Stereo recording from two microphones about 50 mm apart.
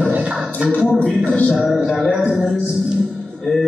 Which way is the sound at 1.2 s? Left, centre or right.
Left.